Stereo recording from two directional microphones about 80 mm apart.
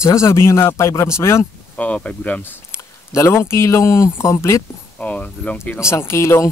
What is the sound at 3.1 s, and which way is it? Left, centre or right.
Speech, left.